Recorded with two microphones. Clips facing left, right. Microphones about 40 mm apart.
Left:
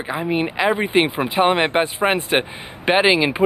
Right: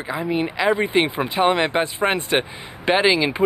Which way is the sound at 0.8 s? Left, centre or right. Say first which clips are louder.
Left 1 dB; centre.